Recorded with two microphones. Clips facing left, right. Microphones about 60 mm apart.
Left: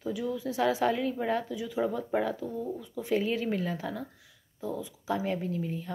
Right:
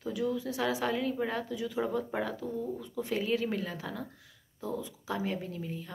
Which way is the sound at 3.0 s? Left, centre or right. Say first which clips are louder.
Left 2 dB; left.